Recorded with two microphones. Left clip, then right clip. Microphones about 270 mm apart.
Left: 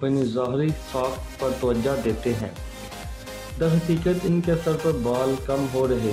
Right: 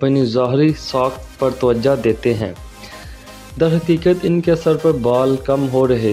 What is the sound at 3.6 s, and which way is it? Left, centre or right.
Speech, right.